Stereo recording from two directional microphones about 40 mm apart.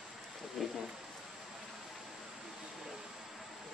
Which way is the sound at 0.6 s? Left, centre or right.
Centre.